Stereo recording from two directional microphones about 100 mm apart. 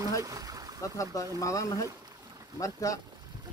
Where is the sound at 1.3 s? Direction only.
35° left (ahead or behind).